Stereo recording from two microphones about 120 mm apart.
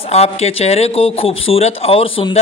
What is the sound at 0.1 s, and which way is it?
Speech, 60° left (ahead or behind).